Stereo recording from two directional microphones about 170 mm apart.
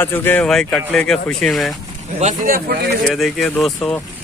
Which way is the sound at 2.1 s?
50° right (ahead or behind).